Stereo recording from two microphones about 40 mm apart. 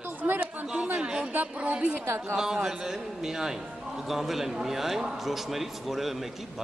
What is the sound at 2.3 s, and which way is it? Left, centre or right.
A man's voice, centre.